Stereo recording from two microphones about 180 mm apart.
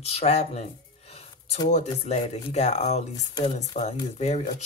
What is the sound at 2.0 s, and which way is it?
Speech, 40° left (ahead or behind).